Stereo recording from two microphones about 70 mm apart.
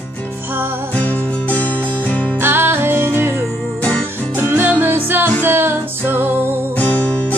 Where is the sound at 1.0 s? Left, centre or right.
Left.